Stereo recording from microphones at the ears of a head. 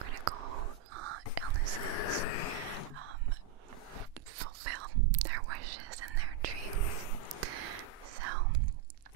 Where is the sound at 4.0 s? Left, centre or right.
Right.